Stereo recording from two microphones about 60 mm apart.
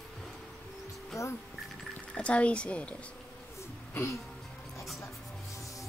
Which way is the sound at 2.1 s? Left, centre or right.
Centre.